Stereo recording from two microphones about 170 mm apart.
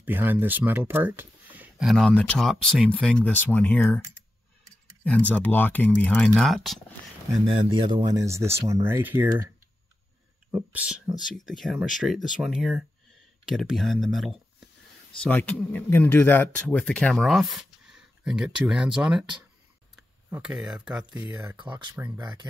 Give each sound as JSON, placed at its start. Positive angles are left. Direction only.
{"t": 0.0, "sound": "speech", "side_deg": -10}
{"t": 5.0, "sound": "speech", "side_deg": 10}
{"t": 7.4, "sound": "speech", "side_deg": -30}
{"t": 10.5, "sound": "speech", "side_deg": -10}
{"t": 11.3, "sound": "speech", "side_deg": 0}
{"t": 22.2, "sound": "speech", "side_deg": -25}